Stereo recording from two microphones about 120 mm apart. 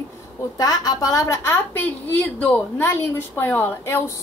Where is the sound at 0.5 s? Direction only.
30° left (ahead or behind).